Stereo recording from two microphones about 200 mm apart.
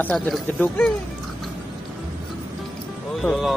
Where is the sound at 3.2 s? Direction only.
Centre (ahead or behind).